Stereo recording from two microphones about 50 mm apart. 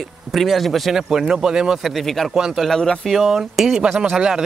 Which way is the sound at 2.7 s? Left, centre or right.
Centre.